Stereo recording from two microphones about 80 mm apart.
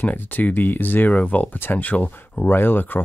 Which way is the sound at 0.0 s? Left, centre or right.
Left.